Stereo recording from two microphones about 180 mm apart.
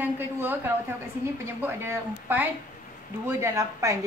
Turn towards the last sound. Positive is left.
turn(degrees=-15)  # may be behind; listen again after turning